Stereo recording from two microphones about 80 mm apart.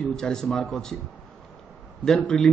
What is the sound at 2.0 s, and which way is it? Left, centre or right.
Speech, centre.